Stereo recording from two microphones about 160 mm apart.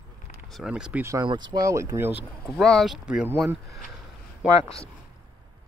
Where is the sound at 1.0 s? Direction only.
25° right (ahead or behind).